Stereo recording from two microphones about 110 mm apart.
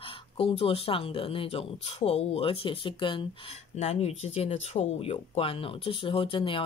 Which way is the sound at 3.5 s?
70° left (ahead or behind).